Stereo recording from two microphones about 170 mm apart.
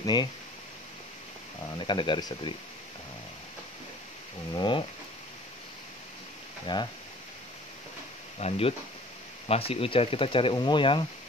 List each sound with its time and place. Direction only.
0.0 s speech: 25° left (ahead or behind)
1.8 s speech: 30° left (ahead or behind)
4.6 s speech: 30° left (ahead or behind)
6.6 s speech: 25° left (ahead or behind)
8.4 s speech: 35° left (ahead or behind)